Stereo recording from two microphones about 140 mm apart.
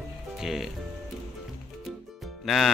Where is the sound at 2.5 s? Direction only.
Centre (ahead or behind).